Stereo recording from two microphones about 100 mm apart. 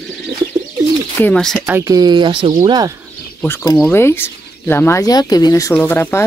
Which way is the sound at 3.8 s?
25° left (ahead or behind).